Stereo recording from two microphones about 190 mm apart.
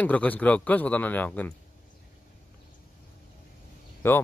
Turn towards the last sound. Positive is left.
turn(degrees=10)  # may be behind; listen again after turning